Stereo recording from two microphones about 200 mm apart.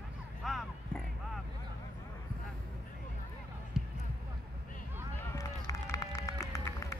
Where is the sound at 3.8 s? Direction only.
5° right (ahead or behind).